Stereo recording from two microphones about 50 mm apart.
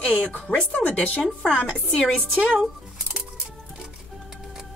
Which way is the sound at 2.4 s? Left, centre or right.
Right.